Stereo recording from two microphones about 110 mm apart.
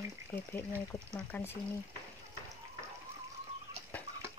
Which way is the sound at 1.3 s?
20° left (ahead or behind).